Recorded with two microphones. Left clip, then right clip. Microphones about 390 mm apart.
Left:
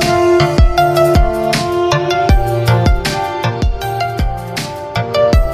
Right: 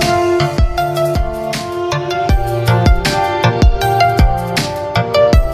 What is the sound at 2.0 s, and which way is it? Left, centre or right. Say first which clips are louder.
Music: left 3 dB; left.